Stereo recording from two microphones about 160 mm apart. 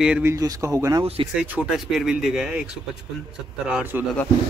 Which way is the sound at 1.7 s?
Centre (ahead or behind).